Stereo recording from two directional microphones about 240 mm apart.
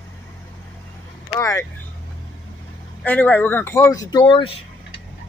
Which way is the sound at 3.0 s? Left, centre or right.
Centre.